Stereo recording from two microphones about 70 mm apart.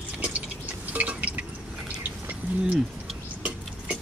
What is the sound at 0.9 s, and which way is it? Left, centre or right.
Drip, right.